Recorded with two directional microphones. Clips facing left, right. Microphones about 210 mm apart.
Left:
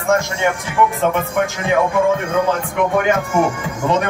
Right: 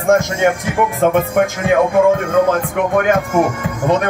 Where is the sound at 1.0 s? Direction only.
55° right (ahead or behind).